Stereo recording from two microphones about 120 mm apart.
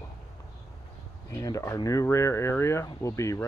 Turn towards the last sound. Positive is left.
turn(degrees=25)  # may be behind; listen again after turning